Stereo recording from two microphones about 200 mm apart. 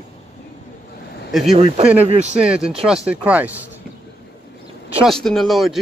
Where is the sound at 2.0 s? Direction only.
30° right (ahead or behind).